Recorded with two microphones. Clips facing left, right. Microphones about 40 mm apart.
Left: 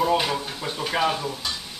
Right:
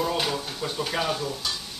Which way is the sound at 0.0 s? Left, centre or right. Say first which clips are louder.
Left 4 dB; centre.